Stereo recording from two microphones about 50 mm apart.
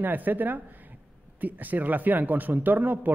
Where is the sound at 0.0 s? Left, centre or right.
Right.